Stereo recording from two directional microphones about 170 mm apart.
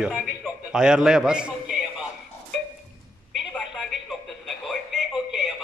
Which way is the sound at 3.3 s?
Centre (ahead or behind).